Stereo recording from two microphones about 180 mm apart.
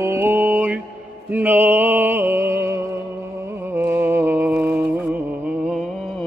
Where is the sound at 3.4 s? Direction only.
15° right (ahead or behind).